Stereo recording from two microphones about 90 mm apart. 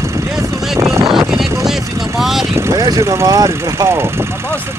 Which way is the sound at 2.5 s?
35° right (ahead or behind).